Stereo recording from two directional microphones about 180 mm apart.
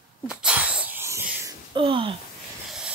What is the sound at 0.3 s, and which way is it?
Sneeze, 5° right (ahead or behind).